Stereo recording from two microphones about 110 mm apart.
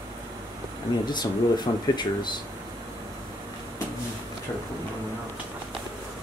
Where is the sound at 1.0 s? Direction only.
40° left (ahead or behind).